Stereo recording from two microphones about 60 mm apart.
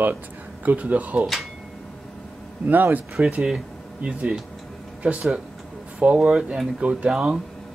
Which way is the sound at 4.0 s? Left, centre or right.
Centre.